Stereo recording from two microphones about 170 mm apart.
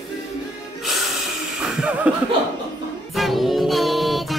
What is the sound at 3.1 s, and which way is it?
Music, centre (ahead or behind).